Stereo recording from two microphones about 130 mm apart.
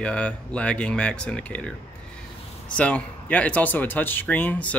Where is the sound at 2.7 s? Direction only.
10° left (ahead or behind).